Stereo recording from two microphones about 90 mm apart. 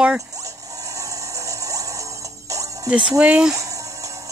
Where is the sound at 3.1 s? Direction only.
15° right (ahead or behind).